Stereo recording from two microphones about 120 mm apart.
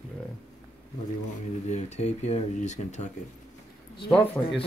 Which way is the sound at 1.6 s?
70° left (ahead or behind).